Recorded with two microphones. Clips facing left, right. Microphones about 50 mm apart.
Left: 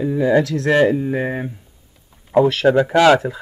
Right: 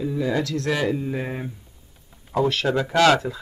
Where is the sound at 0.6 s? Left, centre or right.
Left.